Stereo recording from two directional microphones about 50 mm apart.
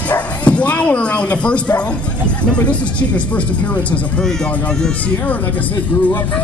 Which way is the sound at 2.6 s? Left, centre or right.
Left.